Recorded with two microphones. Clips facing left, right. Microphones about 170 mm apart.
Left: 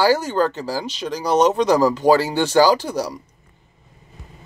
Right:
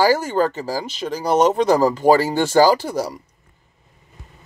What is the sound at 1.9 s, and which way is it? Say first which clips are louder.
Speech: right 1 dB; 10° right (ahead or behind).